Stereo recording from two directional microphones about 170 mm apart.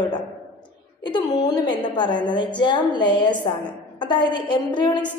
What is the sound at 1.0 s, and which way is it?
A woman's voice, 25° left (ahead or behind).